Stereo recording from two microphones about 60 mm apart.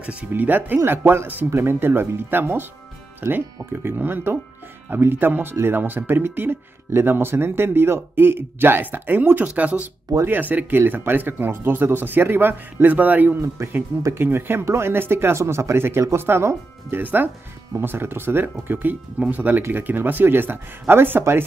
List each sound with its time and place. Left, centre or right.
0.3 s speech: right
14.1 s speech: right
17.0 s speech: right